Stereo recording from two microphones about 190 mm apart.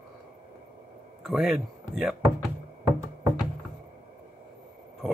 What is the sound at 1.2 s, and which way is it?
Speech, centre (ahead or behind).